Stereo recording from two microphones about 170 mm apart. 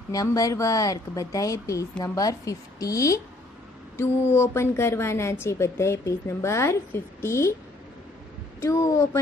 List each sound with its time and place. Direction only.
0.1 s a woman's voice: 20° left (ahead or behind)
8.5 s a woman's voice: 20° left (ahead or behind)